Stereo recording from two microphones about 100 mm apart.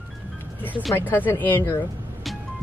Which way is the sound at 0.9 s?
20° left (ahead or behind).